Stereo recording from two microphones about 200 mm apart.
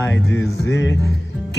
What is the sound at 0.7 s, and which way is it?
Music, 70° left (ahead or behind).